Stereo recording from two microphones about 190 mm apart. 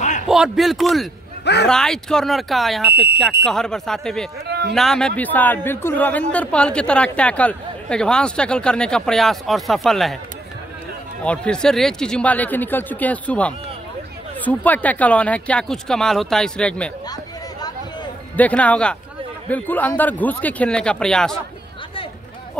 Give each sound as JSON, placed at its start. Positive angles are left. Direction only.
{"t": 0.3, "sound": "speech", "side_deg": 0}
{"t": 1.4, "sound": "speech", "side_deg": 60}
{"t": 1.7, "sound": "speech", "side_deg": 5}
{"t": 4.5, "sound": "a sound", "side_deg": -60}
{"t": 4.7, "sound": "speech", "side_deg": 0}
{"t": 11.2, "sound": "speech", "side_deg": 5}
{"t": 18.3, "sound": "speech", "side_deg": 5}